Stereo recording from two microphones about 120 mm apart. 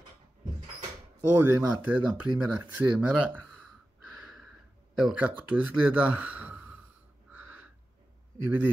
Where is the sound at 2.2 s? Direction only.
10° right (ahead or behind).